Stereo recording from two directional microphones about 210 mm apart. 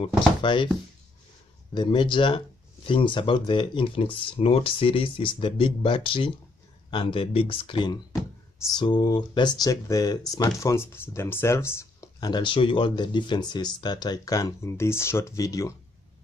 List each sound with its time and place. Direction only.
0.4 s speech: 20° left (ahead or behind)
1.7 s speech: 20° left (ahead or behind)